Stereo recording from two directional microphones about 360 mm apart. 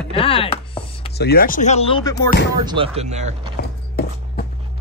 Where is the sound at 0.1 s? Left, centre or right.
Centre.